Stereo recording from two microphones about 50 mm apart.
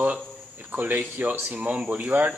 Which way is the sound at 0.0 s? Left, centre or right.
Right.